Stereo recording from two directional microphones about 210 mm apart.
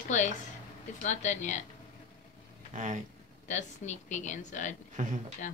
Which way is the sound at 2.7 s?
35° right (ahead or behind).